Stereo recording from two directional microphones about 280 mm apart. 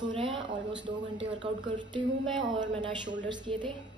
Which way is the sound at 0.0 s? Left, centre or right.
Centre.